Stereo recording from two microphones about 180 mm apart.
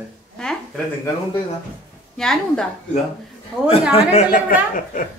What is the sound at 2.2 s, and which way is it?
Speech, 5° left (ahead or behind).